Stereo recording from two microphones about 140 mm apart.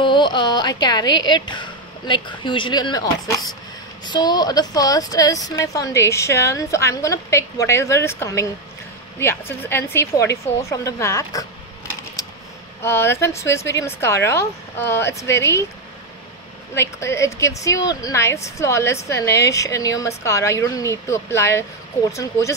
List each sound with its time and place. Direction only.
0.0 s a woman's voice: 35° left (ahead or behind)
12.8 s a woman's voice: 20° left (ahead or behind)
16.7 s a woman's voice: 20° left (ahead or behind)